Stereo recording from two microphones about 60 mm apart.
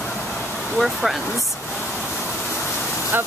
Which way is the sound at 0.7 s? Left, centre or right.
Centre.